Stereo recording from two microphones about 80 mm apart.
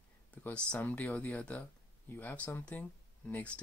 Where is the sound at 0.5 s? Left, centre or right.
Centre.